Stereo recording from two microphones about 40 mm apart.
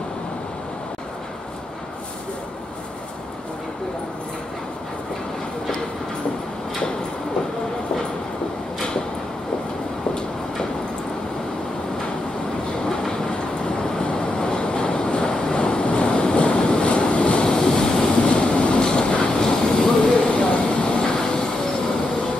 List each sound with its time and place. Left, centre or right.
12.8 s train: left
20.2 s vehicle: left